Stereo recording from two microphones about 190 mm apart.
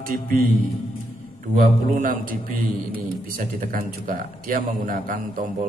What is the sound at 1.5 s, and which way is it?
A man's voice, 50° right (ahead or behind).